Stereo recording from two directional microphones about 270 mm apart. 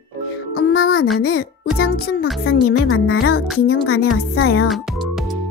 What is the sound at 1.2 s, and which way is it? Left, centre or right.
A child's voice, left.